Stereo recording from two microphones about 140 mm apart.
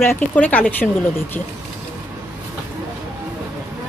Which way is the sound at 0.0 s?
15° left (ahead or behind).